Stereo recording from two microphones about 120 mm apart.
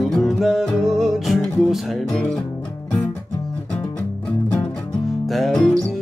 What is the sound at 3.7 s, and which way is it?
Music, 10° left (ahead or behind).